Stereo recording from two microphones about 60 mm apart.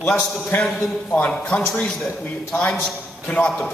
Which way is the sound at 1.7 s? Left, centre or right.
Centre.